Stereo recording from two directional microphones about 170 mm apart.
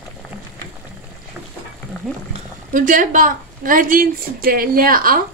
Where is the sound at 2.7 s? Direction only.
50° right (ahead or behind).